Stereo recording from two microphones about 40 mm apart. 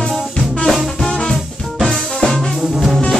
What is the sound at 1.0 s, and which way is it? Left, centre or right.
Music, centre.